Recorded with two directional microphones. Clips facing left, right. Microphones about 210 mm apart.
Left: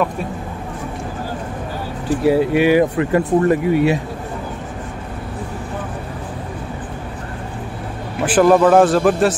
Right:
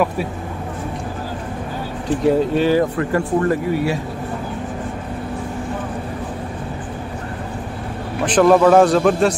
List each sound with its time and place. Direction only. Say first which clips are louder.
2.2 s speech: left 2 dB; 10° left (ahead or behind)
8.3 s a man's voice: even; 5° left (ahead or behind)